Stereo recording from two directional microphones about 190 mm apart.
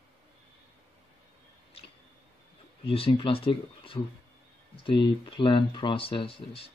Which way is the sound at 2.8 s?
30° left (ahead or behind).